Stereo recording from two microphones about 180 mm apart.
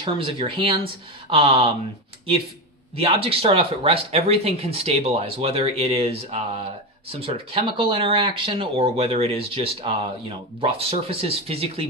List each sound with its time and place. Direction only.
0.0 s speech: 30° right (ahead or behind)
3.0 s speech: 30° right (ahead or behind)